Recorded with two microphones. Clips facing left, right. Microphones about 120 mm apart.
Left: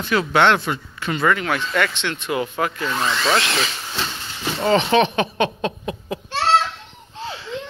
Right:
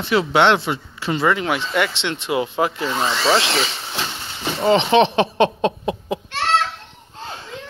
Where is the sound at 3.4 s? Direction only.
25° right (ahead or behind).